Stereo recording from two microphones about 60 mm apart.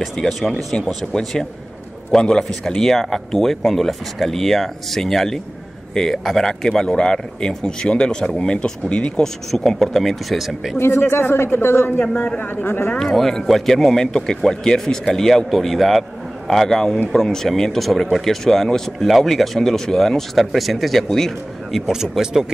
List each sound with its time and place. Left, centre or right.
0.0 s a man's voice: centre
10.8 s speech: left
13.1 s speech: centre